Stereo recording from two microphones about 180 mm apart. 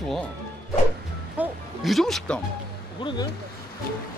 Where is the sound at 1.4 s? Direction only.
Centre (ahead or behind).